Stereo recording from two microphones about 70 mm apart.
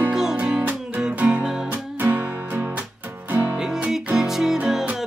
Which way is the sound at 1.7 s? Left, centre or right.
Right.